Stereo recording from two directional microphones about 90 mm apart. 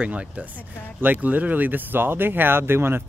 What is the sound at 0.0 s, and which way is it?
Speech, 15° right (ahead or behind).